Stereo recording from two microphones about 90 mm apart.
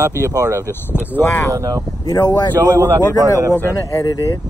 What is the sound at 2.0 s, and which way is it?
Speech, 45° left (ahead or behind).